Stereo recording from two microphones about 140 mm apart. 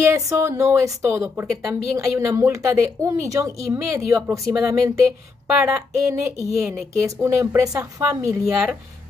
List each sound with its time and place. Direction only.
0.0 s a woman's voice: 20° right (ahead or behind)